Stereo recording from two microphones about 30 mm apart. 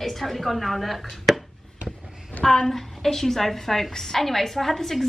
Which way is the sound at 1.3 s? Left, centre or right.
Centre.